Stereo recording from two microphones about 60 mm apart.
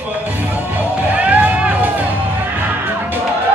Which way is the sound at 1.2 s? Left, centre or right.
Right.